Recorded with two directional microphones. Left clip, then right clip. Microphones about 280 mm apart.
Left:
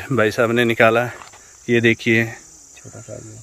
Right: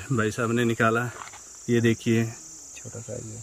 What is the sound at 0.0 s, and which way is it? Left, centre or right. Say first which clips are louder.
Speech: left 10 dB; centre.